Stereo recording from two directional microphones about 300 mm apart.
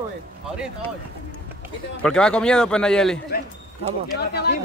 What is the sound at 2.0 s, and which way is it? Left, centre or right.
A man's voice, centre.